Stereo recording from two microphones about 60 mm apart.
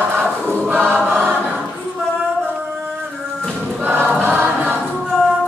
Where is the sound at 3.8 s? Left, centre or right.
Right.